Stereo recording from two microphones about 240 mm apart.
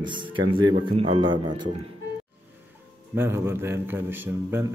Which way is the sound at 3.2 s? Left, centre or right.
Centre.